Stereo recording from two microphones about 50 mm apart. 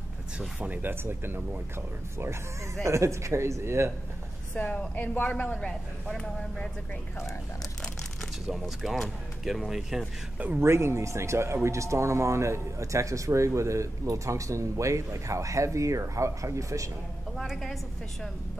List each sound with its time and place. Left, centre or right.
0.6 s speech: right
1.0 s speech: right
2.1 s speech: right
4.6 s a woman's voice: left
4.9 s a man's voice: left; by 6.7 s centre
8.5 s speech: centre
10.6 s speech: right